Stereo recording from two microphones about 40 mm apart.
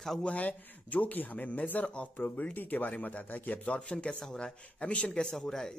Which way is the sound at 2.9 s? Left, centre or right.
Left.